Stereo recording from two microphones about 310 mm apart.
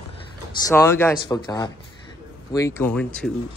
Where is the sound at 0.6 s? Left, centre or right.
Centre.